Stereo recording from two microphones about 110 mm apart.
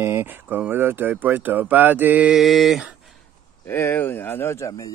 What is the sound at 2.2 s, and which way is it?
Speech, centre (ahead or behind).